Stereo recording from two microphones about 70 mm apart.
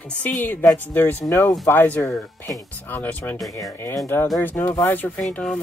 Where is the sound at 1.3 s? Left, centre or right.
Left.